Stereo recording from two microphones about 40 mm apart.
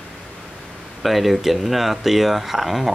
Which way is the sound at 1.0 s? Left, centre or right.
Centre.